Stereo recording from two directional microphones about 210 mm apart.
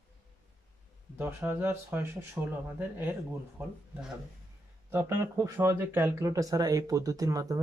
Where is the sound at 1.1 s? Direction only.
10° right (ahead or behind).